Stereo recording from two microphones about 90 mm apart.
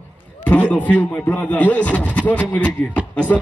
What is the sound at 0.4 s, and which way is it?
A man's voice, 15° left (ahead or behind).